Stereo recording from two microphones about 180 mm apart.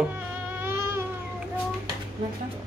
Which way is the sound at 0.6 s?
15° right (ahead or behind).